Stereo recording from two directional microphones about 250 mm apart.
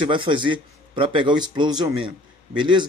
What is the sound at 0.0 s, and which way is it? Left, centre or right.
A man's voice, centre.